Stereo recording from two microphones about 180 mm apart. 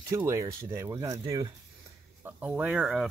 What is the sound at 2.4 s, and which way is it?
Speech, 5° right (ahead or behind).